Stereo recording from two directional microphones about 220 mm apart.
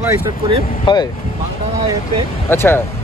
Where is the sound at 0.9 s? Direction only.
20° left (ahead or behind).